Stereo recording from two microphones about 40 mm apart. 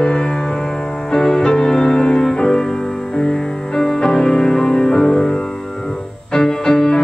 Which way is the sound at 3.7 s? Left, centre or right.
Centre.